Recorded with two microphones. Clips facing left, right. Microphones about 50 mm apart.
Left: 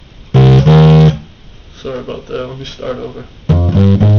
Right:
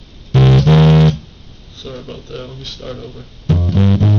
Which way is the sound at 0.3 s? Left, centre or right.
Left.